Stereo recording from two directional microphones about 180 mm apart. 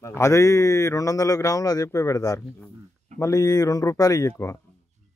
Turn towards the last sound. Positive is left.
turn(degrees=15)  # may be behind; listen again after turning